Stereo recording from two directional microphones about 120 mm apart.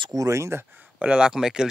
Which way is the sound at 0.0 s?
30° right (ahead or behind).